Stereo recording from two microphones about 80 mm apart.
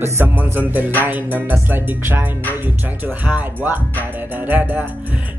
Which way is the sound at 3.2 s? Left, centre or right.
Right.